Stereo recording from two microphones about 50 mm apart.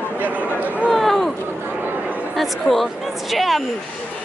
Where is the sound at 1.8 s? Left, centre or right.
Right.